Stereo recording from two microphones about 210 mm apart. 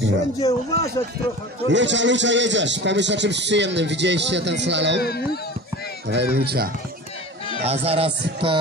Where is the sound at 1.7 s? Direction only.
60° right (ahead or behind).